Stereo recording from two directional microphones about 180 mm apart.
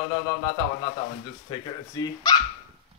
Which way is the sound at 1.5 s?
25° left (ahead or behind).